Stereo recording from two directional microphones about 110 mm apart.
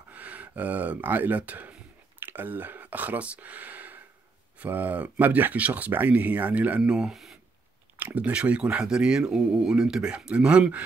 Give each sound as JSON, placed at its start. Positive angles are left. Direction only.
{"t": 0.1, "sound": "speech", "side_deg": -15}